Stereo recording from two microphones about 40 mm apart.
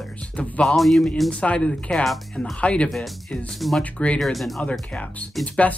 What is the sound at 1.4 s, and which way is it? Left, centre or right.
Speech, left.